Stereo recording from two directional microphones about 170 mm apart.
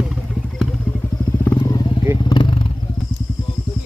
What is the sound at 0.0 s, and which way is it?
Vehicle, centre (ahead or behind).